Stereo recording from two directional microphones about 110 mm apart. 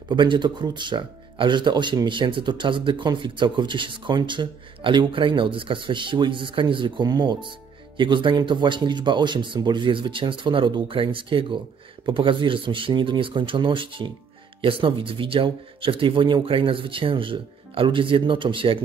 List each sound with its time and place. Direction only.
0.1 s speech: 45° right (ahead or behind)